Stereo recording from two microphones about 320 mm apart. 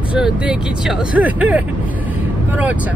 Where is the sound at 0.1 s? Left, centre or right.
Centre.